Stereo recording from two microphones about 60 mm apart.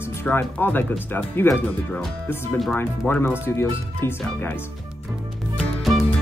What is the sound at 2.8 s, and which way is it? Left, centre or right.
Speech, left.